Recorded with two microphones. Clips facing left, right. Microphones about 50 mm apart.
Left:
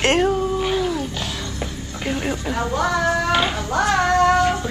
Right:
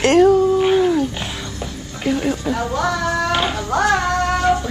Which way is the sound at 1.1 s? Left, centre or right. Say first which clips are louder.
Right 1 dB; right.